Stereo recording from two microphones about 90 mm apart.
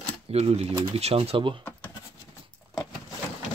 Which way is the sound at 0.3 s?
90° right.